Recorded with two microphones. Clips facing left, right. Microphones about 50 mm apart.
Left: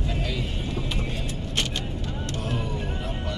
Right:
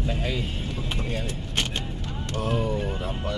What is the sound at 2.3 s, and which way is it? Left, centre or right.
Music, right.